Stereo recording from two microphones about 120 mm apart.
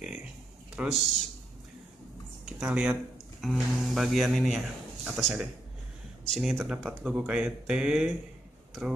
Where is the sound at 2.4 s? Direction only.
10° right (ahead or behind).